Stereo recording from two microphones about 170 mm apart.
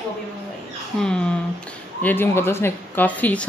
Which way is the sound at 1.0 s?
5° left (ahead or behind).